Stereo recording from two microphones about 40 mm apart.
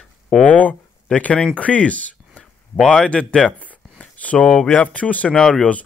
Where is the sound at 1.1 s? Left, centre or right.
Left.